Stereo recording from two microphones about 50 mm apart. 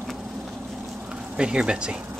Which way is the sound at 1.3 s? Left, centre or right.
Centre.